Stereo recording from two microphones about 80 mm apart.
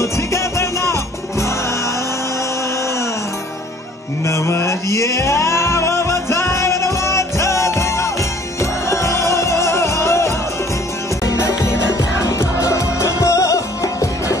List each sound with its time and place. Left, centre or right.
0.0 s music: left
4.3 s music: left